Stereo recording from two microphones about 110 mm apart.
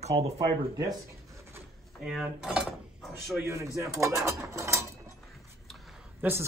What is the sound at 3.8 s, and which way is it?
Speech, 25° right (ahead or behind).